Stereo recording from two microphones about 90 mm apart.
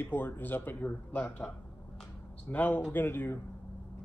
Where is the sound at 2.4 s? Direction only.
15° left (ahead or behind).